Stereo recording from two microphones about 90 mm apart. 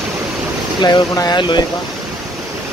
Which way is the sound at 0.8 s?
60° left (ahead or behind).